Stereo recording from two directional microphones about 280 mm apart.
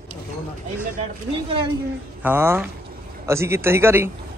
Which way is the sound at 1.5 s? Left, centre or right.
Centre.